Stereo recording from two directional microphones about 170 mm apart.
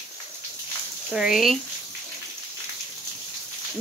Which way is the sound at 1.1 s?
Centre (ahead or behind).